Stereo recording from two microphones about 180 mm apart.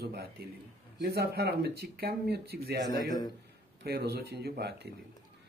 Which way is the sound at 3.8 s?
65° right (ahead or behind).